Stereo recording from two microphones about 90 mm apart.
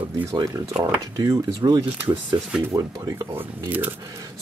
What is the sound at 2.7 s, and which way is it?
Speech, 30° right (ahead or behind).